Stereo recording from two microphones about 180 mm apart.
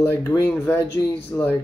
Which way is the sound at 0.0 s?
10° left (ahead or behind).